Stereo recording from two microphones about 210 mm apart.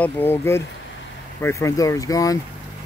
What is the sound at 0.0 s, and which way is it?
Speech, 10° left (ahead or behind).